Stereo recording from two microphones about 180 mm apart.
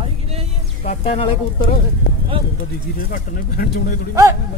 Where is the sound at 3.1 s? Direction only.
50° left (ahead or behind).